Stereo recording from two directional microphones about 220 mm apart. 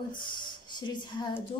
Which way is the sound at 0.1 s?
20° left (ahead or behind).